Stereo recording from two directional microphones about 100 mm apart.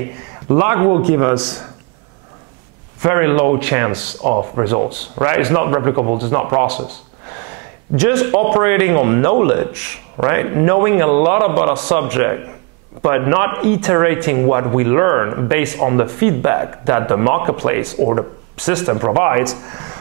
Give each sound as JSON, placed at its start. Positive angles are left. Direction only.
{"t": 0.0, "sound": "a man's voice", "side_deg": -20}
{"t": 3.0, "sound": "a man's voice", "side_deg": -20}
{"t": 5.3, "sound": "a man's voice", "side_deg": -20}
{"t": 8.0, "sound": "a man's voice", "side_deg": -15}